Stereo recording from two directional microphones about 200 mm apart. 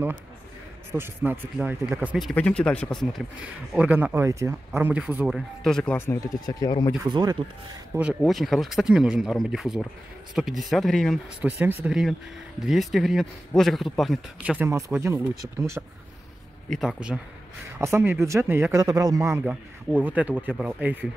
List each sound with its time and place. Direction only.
0.9 s speech: 10° right (ahead or behind); by 7.0 s 20° left (ahead or behind)
7.0 s speech: 20° right (ahead or behind)
7.9 s speech: 5° right (ahead or behind)
11.4 s a man's voice: 10° right (ahead or behind)
16.7 s speech: centre (ahead or behind)
17.7 s a man's voice: 15° right (ahead or behind)